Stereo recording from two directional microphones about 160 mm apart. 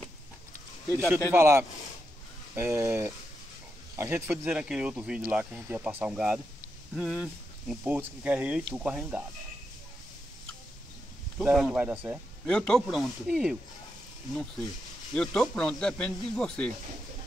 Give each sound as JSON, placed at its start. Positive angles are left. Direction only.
{"t": 0.9, "sound": "speech", "side_deg": -15}
{"t": 7.7, "sound": "speech", "side_deg": -10}
{"t": 11.3, "sound": "speech", "side_deg": 0}
{"t": 12.4, "sound": "speech", "side_deg": 5}
{"t": 15.1, "sound": "speech", "side_deg": 5}